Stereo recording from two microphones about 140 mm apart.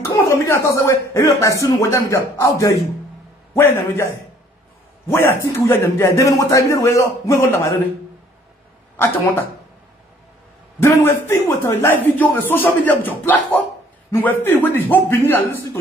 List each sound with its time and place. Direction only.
0.1 s a man's voice: 20° left (ahead or behind)
8.9 s a man's voice: 15° left (ahead or behind)
10.8 s a man's voice: 15° left (ahead or behind)